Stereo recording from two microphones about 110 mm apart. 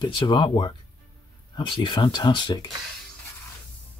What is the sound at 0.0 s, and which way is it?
Speech, 50° left (ahead or behind).